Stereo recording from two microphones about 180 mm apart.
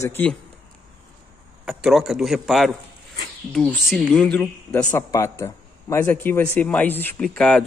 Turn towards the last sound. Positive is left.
turn(degrees=0)  # may be behind; listen again after turning